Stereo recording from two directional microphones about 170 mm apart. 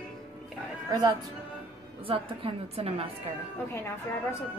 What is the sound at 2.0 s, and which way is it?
A woman's voice, 30° right (ahead or behind).